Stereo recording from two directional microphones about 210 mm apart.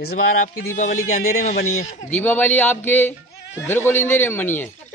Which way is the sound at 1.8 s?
35° left (ahead or behind).